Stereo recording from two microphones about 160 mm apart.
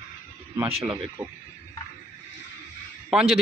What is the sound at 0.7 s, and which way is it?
Speech, 35° right (ahead or behind).